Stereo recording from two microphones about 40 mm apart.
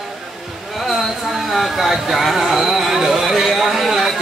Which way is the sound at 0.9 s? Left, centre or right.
Centre.